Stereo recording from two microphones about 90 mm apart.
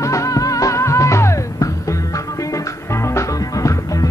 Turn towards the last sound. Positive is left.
turn(degrees=35)  # may be behind; listen again after turning